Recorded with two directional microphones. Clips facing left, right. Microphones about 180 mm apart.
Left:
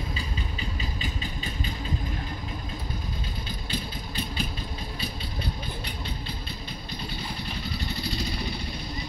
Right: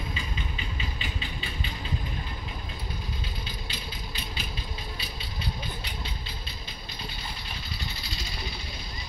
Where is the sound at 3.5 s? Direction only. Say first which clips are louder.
Left 5 dB; 45° left (ahead or behind).